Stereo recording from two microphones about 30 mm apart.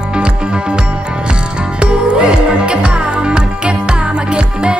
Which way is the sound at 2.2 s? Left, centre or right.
Right.